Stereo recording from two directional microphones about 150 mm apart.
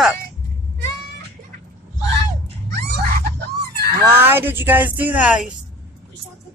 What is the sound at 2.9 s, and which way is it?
Cat, 90° right.